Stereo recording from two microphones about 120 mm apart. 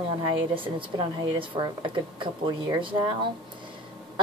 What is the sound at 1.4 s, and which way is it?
A woman's voice, 40° right (ahead or behind).